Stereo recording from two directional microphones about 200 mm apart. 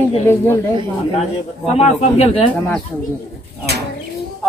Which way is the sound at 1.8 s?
30° left (ahead or behind).